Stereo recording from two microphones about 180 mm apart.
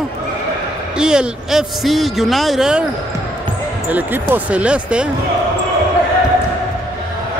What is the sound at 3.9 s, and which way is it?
Speech, 10° right (ahead or behind).